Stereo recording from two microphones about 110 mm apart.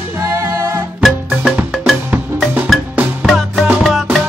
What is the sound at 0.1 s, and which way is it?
Music, 25° right (ahead or behind).